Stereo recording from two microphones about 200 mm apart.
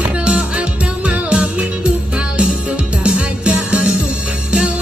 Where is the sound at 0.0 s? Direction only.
5° right (ahead or behind).